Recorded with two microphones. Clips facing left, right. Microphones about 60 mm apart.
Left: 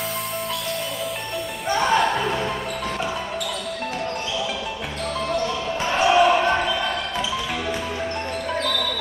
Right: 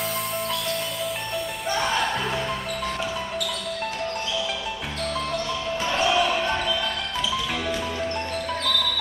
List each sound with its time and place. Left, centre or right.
1.8 s music: centre
5.9 s basketball bounce: left